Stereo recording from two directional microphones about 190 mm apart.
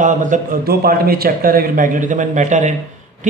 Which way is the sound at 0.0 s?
40° right (ahead or behind).